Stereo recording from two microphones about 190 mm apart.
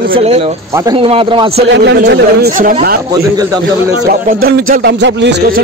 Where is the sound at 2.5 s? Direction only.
45° right (ahead or behind).